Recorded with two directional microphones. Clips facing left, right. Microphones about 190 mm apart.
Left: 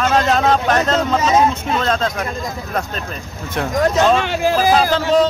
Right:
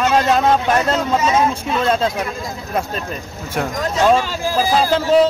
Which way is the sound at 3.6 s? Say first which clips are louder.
Left 3 dB; 5° right (ahead or behind).